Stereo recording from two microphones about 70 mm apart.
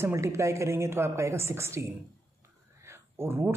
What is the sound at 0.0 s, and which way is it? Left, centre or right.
Speech, right.